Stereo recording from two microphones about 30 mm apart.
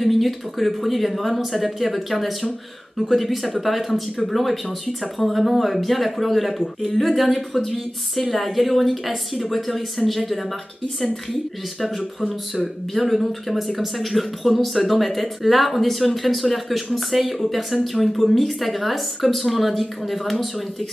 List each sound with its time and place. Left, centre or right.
0.0 s speech: centre
12.0 s speech: centre